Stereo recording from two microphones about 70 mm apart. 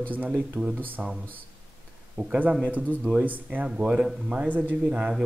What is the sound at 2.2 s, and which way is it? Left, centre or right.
Speech, centre.